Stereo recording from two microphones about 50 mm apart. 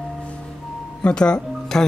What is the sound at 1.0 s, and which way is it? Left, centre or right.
Speech, centre.